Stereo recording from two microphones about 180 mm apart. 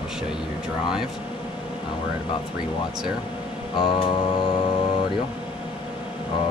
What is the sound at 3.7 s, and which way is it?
Music, 25° left (ahead or behind).